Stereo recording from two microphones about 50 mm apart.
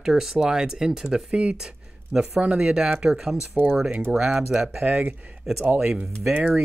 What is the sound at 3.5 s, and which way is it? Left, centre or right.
Speech, right.